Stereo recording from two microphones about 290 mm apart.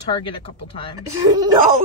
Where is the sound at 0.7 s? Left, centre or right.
Centre.